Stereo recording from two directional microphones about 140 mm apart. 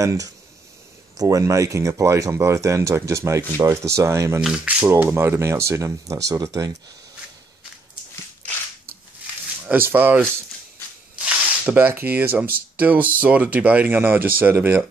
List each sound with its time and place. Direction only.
0.0 s speech: 25° right (ahead or behind)
4.4 s speech: 5° right (ahead or behind); by 6.7 s 25° right (ahead or behind)
9.7 s speech: 15° right (ahead or behind)